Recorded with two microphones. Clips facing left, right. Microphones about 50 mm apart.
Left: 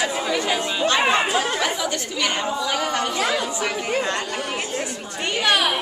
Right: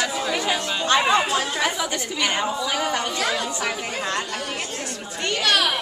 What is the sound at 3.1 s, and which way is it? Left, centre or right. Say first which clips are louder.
Speech: left 2 dB; centre.